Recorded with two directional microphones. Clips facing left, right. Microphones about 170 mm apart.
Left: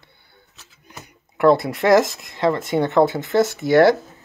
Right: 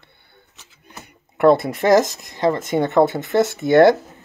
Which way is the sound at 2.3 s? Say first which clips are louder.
Right 1 dB; 20° right (ahead or behind).